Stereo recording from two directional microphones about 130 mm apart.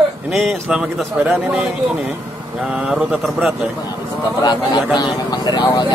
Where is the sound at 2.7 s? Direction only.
10° right (ahead or behind).